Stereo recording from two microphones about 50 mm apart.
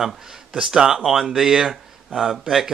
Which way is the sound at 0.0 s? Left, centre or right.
Centre.